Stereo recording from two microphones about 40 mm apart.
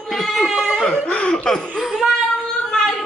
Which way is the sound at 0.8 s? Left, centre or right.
Left.